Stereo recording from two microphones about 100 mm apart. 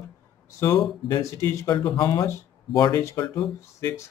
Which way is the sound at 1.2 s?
30° left (ahead or behind).